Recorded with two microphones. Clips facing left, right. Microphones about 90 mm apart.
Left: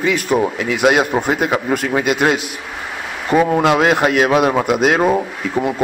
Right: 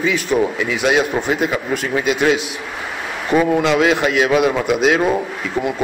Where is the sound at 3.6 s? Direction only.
50° left (ahead or behind).